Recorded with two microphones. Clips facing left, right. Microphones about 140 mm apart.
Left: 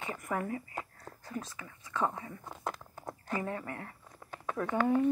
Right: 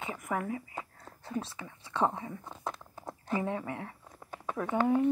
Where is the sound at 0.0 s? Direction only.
5° right (ahead or behind).